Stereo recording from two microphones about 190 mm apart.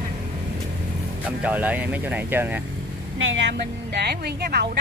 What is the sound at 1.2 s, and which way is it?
Speech, 10° right (ahead or behind).